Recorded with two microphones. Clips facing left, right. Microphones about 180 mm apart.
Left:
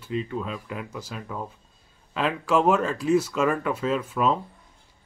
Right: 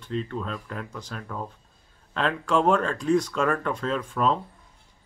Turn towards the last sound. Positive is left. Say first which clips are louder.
# left 1 dB
turn(degrees=5)  # may be behind; listen again after turning